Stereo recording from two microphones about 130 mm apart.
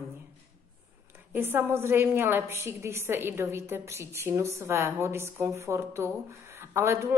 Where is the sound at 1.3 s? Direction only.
15° right (ahead or behind).